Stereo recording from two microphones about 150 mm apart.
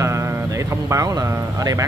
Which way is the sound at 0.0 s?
20° right (ahead or behind).